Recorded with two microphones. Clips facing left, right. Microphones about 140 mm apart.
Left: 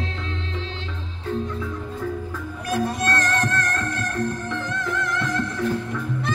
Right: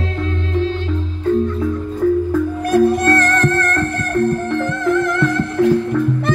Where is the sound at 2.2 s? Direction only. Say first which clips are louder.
Right 11 dB; 55° right (ahead or behind).